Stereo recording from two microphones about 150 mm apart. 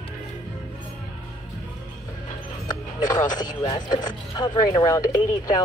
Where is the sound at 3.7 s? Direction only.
30° left (ahead or behind).